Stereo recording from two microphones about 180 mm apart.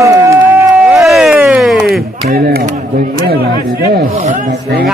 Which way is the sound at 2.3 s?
60° right (ahead or behind).